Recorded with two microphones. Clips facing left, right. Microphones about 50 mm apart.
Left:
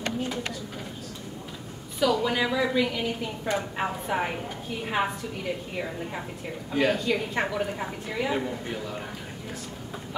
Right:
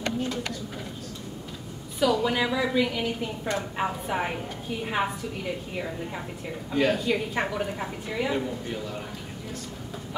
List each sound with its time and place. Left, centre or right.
2.0 s a woman's voice: centre